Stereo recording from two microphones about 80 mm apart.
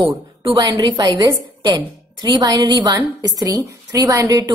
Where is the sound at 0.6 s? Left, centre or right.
Right.